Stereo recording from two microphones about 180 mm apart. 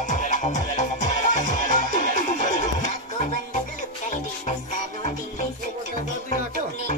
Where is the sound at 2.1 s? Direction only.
45° left (ahead or behind).